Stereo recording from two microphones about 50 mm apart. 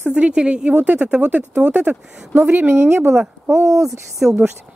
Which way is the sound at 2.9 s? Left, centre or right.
Right.